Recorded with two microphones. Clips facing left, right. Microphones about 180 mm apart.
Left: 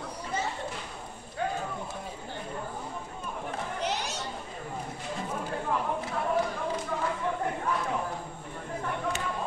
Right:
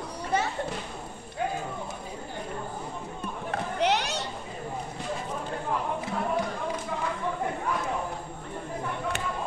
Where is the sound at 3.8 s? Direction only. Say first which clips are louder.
Right 8 dB; 70° right (ahead or behind).